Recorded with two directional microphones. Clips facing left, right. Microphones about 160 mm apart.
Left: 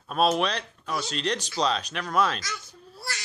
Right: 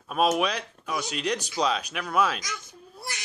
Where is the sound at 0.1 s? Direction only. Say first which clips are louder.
Even; 10° right (ahead or behind).